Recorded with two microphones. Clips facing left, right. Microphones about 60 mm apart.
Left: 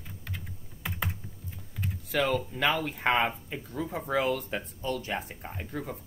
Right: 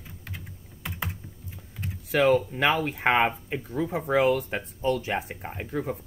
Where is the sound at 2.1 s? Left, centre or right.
Right.